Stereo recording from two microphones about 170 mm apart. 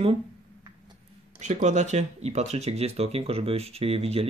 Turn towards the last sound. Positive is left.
turn(degrees=-35)  # may be behind; listen again after turning